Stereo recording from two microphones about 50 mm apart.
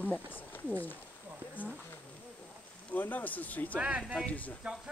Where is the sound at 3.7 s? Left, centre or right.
Right.